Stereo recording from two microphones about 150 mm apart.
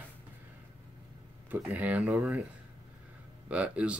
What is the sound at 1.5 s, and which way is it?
Speech, 10° right (ahead or behind).